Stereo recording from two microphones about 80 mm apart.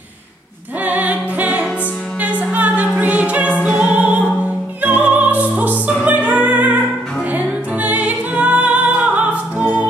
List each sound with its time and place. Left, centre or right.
0.8 s music: centre
3.6 s opera: centre
4.8 s music: right